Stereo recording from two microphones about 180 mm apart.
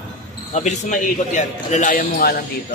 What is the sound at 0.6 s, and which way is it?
Speech, 45° left (ahead or behind).